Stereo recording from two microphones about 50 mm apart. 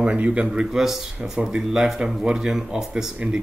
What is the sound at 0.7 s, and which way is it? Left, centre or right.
Speech, centre.